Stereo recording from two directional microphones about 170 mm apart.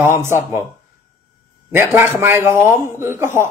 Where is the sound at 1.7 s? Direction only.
15° right (ahead or behind).